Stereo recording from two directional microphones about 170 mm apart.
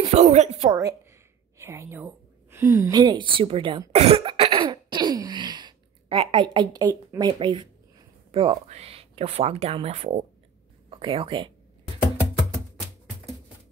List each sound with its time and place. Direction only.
0.0 s speech: 40° right (ahead or behind)
0.7 s a woman's voice: 20° right (ahead or behind)